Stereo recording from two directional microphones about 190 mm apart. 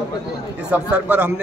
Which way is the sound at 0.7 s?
10° right (ahead or behind).